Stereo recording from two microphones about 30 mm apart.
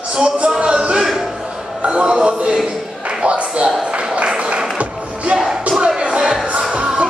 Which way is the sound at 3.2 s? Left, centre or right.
Right.